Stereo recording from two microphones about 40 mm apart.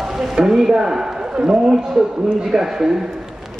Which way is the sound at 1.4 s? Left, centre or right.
Right.